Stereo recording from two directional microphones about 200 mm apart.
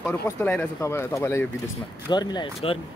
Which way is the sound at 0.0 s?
10° left (ahead or behind).